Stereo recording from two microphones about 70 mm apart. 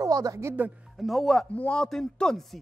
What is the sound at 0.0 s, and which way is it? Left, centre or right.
Music, right.